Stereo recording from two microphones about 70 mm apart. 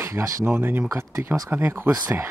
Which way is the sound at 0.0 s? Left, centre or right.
Right.